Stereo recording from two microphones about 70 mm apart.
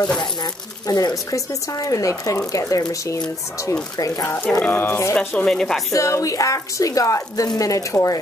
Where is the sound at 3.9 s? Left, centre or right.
Left.